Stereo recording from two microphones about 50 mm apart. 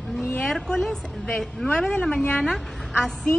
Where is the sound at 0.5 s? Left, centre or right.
Centre.